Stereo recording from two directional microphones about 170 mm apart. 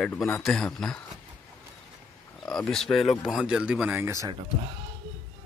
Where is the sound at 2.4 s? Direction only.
5° left (ahead or behind); by 4.3 s 15° right (ahead or behind).